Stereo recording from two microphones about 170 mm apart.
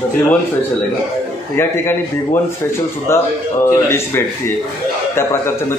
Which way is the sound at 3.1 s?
15° left (ahead or behind).